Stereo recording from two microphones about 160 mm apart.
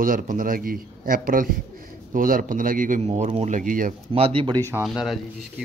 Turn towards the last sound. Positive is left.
turn(degrees=0)  # may be behind; listen again after turning